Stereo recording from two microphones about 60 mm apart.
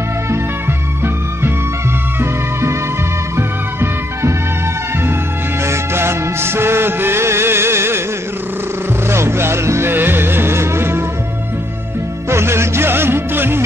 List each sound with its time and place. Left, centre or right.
2.1 s music: right
5.6 s music: right
9.1 s music: right
12.3 s music: right